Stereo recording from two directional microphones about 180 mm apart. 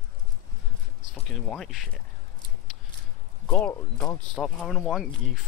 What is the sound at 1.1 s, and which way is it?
Speech, centre (ahead or behind).